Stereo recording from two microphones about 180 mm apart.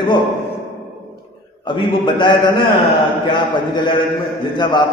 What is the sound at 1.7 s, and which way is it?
A man's voice, 25° left (ahead or behind).